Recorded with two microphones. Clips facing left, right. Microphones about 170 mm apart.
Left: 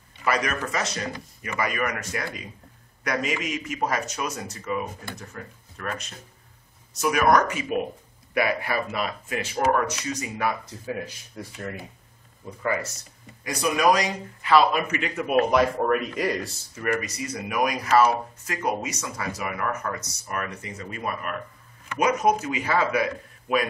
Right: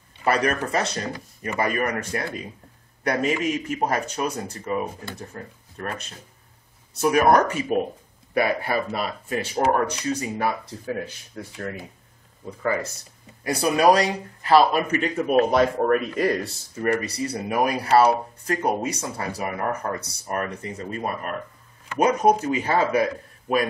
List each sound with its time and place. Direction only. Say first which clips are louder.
0.2 s speech: right 4 dB; 35° right (ahead or behind)
3.5 s speech: right 3 dB; 35° right (ahead or behind)
7.0 s speech: right 3 dB; 35° right (ahead or behind)
13.4 s speech: right 3 dB; 35° right (ahead or behind)